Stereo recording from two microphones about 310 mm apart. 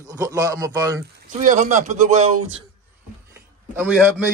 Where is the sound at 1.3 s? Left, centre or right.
Right.